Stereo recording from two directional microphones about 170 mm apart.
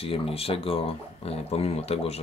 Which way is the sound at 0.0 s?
35° left (ahead or behind).